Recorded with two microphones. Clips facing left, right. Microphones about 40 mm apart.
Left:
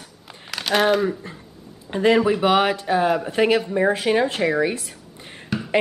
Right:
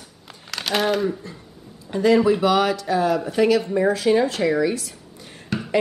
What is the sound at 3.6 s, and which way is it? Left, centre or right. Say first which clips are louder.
Speech: even; centre.